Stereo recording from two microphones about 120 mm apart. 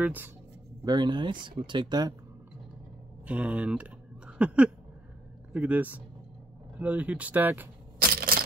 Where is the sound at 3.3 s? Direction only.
10° right (ahead or behind).